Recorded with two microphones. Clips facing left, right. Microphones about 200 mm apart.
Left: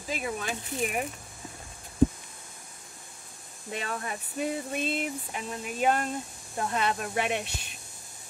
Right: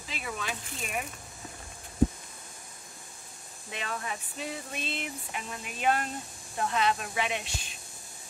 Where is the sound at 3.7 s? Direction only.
45° left (ahead or behind).